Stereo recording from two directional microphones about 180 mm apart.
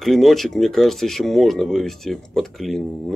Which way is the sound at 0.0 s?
Centre (ahead or behind).